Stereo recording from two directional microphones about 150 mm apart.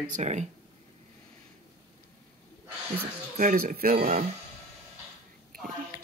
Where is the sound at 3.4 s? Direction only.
60° right (ahead or behind); by 4.2 s 80° right.